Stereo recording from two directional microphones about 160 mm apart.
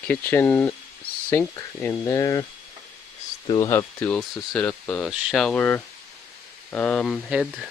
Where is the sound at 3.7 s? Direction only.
15° left (ahead or behind).